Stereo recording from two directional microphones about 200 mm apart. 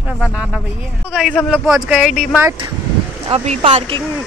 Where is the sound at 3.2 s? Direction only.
30° right (ahead or behind).